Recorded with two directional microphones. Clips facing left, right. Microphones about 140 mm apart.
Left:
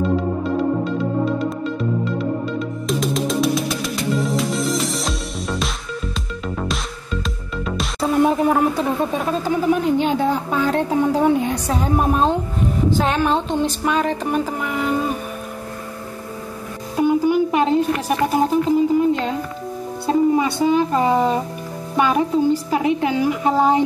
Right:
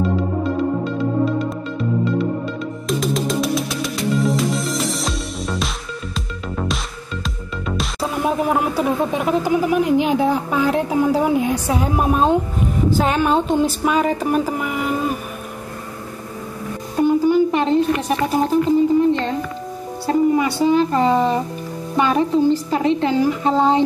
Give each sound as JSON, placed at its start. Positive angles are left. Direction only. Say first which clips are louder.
{"t": 0.8, "sound": "music", "louder": "right 1 dB", "side_deg": 0}
{"t": 2.9, "sound": "music", "louder": "right 1 dB", "side_deg": 0}
{"t": 7.2, "sound": "speech", "louder": "even", "side_deg": 0}
{"t": 16.9, "sound": "speech", "louder": "right 1 dB", "side_deg": 10}
{"t": 20.1, "sound": "a woman's voice", "louder": "even", "side_deg": 20}